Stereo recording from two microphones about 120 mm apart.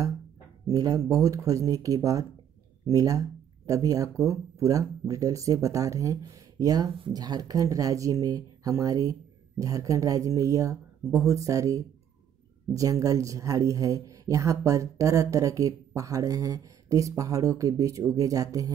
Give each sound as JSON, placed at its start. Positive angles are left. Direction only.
{"t": 0.7, "sound": "speech", "side_deg": -30}